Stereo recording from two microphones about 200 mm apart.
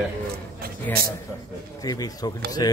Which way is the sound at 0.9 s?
10° left (ahead or behind).